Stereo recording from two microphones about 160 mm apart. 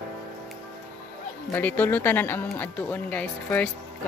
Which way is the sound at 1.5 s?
10° left (ahead or behind).